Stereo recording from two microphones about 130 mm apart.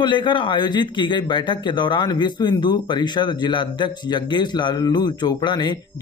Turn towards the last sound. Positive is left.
turn(degrees=35)  # may be behind; listen again after turning